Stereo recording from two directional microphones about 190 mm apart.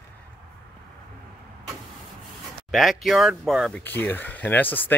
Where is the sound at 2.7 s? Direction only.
Centre (ahead or behind).